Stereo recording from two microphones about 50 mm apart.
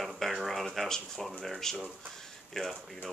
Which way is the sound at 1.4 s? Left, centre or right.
Centre.